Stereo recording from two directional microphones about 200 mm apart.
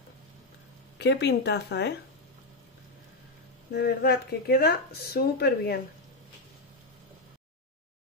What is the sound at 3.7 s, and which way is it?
Speech, 55° left (ahead or behind).